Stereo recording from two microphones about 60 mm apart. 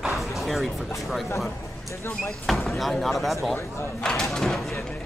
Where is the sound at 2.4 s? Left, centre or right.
Centre.